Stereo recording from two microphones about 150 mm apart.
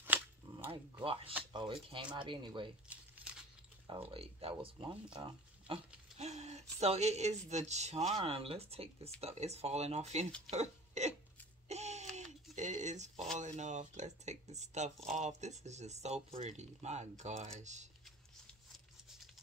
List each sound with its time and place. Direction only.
0.5 s dog: 30° right (ahead or behind)
1.0 s speech: 35° right (ahead or behind)
4.1 s speech: 40° right (ahead or behind)
6.1 s speech: 50° right (ahead or behind)
11.7 s a sound: 50° right (ahead or behind)
13.4 s speech: 50° right (ahead or behind)